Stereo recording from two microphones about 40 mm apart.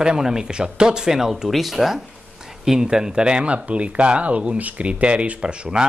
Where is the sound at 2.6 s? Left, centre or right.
Centre; by 5.4 s right.